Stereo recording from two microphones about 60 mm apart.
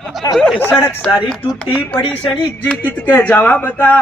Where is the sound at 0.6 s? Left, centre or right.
Left.